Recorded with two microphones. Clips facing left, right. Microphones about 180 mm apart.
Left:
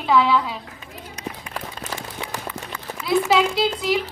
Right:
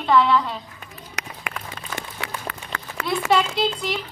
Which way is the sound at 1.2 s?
90° right.